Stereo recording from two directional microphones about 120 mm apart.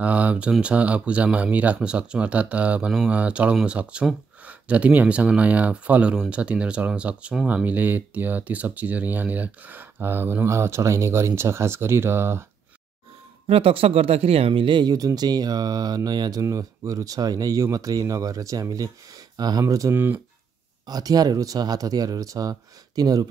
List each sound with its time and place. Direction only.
0.0 s speech: 10° right (ahead or behind)
13.5 s speech: 50° right (ahead or behind); by 20.2 s 20° right (ahead or behind)
20.8 s speech: 30° right (ahead or behind)